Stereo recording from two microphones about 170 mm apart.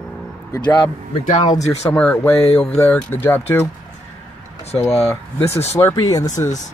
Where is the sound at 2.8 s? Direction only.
15° left (ahead or behind).